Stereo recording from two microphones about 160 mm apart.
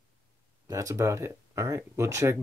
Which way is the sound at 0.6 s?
20° right (ahead or behind).